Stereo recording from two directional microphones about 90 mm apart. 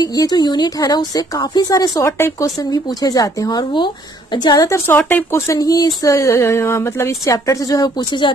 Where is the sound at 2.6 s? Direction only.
45° left (ahead or behind).